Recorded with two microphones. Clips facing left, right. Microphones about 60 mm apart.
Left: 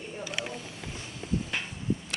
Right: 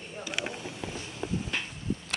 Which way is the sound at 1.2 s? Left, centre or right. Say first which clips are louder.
Left 1 dB; right.